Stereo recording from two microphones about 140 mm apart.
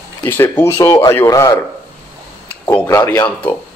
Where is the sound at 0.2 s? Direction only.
15° left (ahead or behind).